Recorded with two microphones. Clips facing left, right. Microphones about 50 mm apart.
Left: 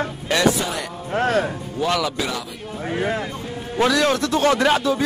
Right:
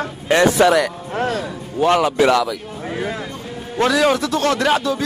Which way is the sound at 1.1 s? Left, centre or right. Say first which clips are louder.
Left 1 dB; left.